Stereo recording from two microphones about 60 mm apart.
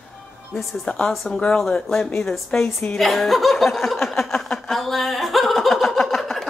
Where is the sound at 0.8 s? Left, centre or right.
Centre.